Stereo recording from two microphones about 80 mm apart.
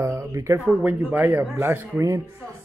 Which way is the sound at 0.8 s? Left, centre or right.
Centre.